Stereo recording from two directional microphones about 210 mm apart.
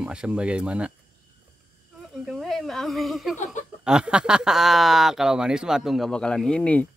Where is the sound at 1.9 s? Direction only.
Centre (ahead or behind).